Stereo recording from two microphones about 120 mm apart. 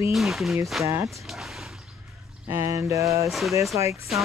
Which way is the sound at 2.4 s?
20° right (ahead or behind).